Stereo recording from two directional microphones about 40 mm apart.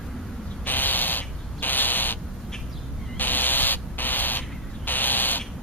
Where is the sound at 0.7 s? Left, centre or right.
Left.